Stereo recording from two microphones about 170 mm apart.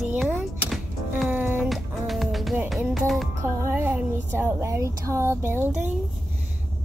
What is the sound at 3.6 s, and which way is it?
Speech, 15° right (ahead or behind).